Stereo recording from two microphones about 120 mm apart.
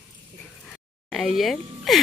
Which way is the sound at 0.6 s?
Centre (ahead or behind).